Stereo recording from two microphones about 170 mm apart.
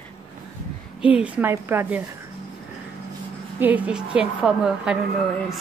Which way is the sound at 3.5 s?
10° right (ahead or behind).